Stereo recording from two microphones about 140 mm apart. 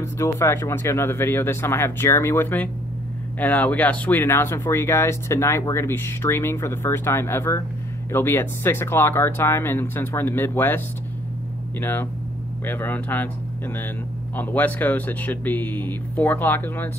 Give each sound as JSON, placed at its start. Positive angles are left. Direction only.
{"t": 0.0, "sound": "speech", "side_deg": 20}
{"t": 11.8, "sound": "speech", "side_deg": 15}